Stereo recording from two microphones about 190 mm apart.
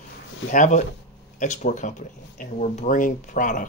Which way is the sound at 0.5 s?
40° left (ahead or behind).